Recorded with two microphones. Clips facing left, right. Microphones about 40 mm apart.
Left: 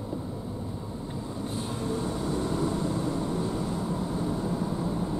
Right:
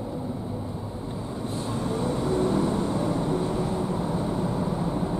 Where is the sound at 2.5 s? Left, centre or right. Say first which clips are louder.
Right 4 dB; right.